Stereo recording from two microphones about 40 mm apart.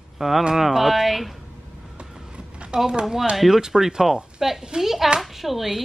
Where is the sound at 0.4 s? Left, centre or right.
Centre.